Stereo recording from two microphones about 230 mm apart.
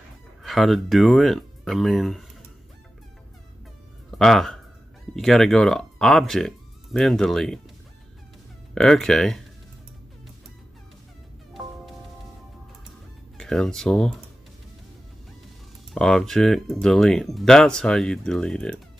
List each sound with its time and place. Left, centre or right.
0.4 s speech: centre
4.2 s speech: centre
8.7 s speech: centre
13.4 s speech: centre
15.9 s speech: centre